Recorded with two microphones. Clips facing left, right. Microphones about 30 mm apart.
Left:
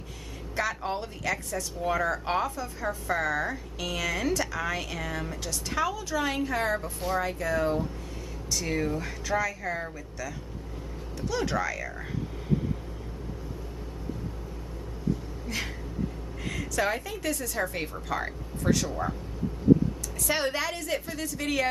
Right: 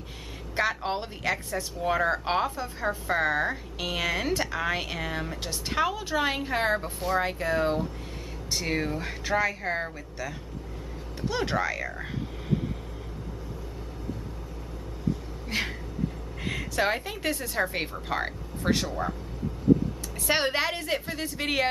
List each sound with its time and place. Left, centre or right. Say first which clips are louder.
0.6 s a woman's voice: right 2 dB; right
16.4 s a woman's voice: right 2 dB; right
18.9 s speech: right 1 dB; centre
20.2 s speech: right 3 dB; right